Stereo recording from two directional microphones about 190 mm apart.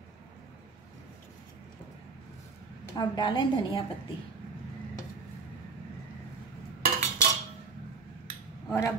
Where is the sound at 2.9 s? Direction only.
20° left (ahead or behind).